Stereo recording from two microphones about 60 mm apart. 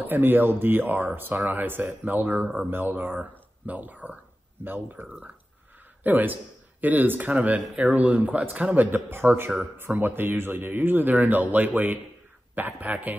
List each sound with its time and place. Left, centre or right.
0.0 s speech: right
6.0 s speech: right